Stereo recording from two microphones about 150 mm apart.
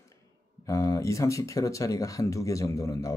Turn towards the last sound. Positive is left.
turn(degrees=20)  # may be behind; listen again after turning